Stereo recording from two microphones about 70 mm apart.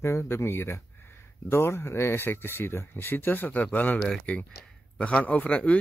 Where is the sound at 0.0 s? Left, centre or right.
Left.